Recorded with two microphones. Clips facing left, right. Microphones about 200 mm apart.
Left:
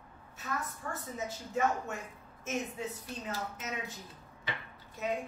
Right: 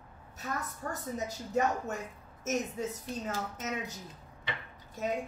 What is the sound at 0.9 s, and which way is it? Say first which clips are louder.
A woman's voice: right 3 dB; 40° right (ahead or behind).